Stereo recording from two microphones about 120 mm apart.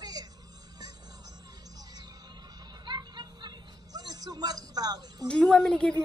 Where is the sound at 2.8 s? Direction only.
35° right (ahead or behind).